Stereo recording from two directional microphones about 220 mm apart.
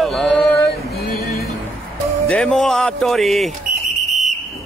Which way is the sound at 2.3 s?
Centre (ahead or behind).